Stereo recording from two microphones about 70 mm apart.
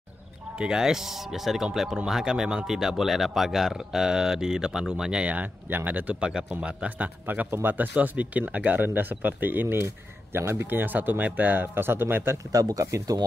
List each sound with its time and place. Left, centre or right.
0.6 s speech: centre
6.2 s speech: centre; by 12.4 s right
12.5 s speech: right